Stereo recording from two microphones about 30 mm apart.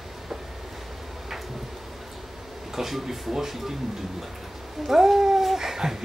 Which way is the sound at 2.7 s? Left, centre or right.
Centre.